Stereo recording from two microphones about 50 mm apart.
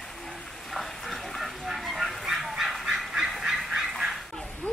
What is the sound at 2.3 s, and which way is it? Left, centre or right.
Goose, centre.